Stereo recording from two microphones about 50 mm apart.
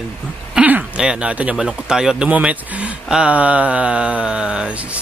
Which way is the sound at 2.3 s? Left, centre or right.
Right.